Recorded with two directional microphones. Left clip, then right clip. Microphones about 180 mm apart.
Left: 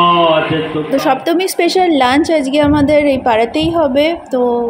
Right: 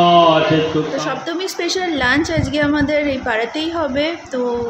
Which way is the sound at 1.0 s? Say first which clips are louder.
Left 8 dB; 35° left (ahead or behind).